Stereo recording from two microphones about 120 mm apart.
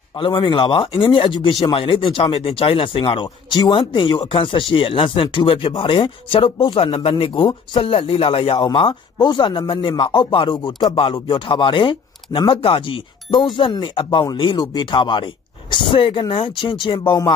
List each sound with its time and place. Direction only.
0.1 s speech: 45° left (ahead or behind)